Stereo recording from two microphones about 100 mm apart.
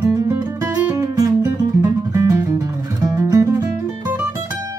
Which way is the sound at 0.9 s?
40° right (ahead or behind).